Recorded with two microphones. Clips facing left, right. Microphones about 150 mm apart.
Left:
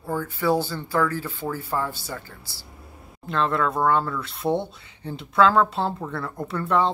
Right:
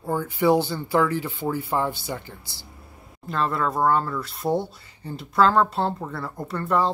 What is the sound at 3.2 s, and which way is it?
Speech, 5° right (ahead or behind).